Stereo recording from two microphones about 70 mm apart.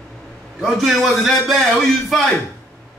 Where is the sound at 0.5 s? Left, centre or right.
Centre.